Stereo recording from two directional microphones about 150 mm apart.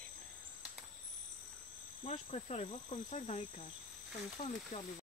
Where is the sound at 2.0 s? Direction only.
40° left (ahead or behind).